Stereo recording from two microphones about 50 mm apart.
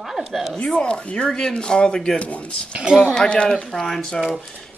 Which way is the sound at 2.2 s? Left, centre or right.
Left.